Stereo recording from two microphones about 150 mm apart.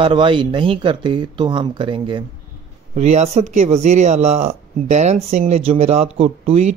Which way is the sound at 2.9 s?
45° right (ahead or behind).